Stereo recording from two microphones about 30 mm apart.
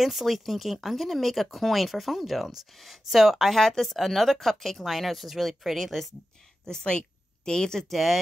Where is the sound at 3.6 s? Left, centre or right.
Centre.